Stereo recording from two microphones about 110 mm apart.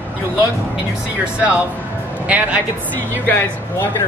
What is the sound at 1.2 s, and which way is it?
Speech, 10° right (ahead or behind).